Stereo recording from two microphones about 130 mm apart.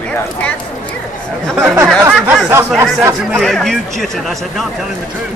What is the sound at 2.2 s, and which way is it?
Speech, 15° right (ahead or behind).